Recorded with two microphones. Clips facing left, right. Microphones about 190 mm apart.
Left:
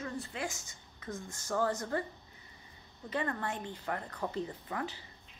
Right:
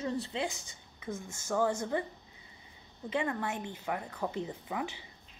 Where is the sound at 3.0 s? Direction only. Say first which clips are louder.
Right 2 dB; 10° right (ahead or behind).